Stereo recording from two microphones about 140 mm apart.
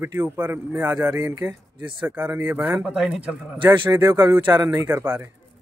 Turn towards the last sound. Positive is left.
turn(degrees=-15)  # may be behind; listen again after turning